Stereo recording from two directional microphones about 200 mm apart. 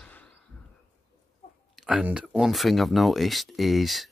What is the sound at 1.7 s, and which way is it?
Speech, centre (ahead or behind).